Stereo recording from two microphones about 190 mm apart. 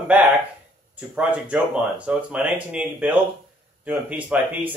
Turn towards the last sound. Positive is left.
turn(degrees=-5)  # may be behind; listen again after turning